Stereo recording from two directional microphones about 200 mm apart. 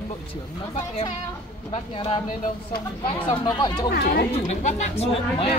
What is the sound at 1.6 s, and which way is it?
Speech, 25° left (ahead or behind).